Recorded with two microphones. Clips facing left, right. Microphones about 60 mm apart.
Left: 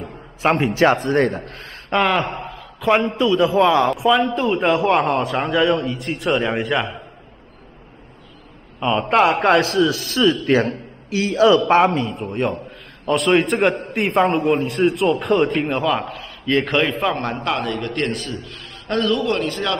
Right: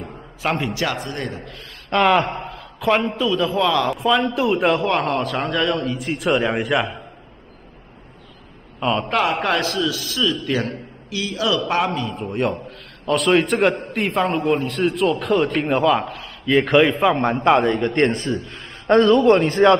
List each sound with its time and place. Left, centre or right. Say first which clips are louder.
0.4 s a man's voice: left 6 dB; left
2.0 s a man's voice: right 2 dB; centre
3.5 s a man's voice: left 4 dB; left
3.9 s a man's voice: left 2 dB; centre
4.7 s a man's voice: left 3 dB; centre
8.7 s a sound: left 1 dB; centre
9.1 s a man's voice: left 8 dB; left
12.1 s a man's voice: even; centre; by 19.8 s right